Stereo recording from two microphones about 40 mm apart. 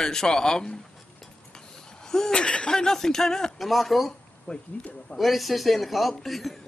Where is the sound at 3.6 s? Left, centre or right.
Centre.